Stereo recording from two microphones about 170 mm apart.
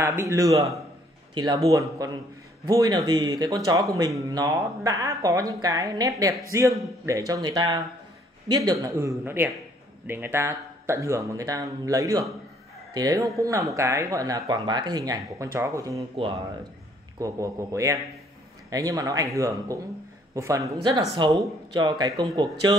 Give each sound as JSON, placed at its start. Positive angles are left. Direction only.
{"t": 0.0, "sound": "speech", "side_deg": -15}
{"t": 17.2, "sound": "speech", "side_deg": -20}